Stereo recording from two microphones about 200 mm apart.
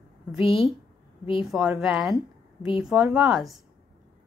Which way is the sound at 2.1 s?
25° left (ahead or behind).